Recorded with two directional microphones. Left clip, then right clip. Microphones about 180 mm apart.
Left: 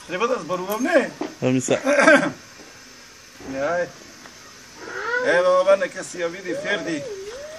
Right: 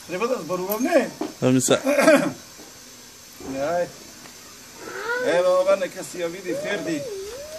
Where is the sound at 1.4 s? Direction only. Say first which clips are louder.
Right 2 dB; 25° right (ahead or behind).